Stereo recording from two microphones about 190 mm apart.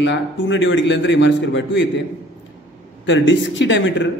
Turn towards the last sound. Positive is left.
turn(degrees=75)  # may be behind; listen again after turning